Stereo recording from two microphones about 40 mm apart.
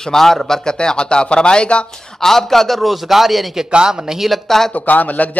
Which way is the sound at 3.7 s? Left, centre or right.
Right.